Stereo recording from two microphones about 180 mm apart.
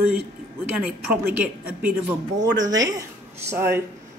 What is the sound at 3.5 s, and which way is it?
Speech, 15° right (ahead or behind).